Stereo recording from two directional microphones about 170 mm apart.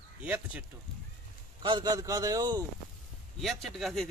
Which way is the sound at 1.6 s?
25° right (ahead or behind).